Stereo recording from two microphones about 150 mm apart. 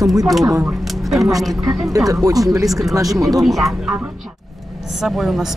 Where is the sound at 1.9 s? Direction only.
25° right (ahead or behind).